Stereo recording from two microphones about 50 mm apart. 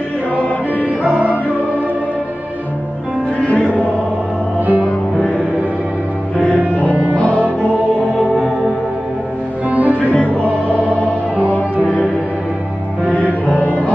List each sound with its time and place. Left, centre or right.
0.8 s music: right
3.4 s music: left
7.2 s music: left
9.7 s music: right
13.0 s music: right
13.6 s music: left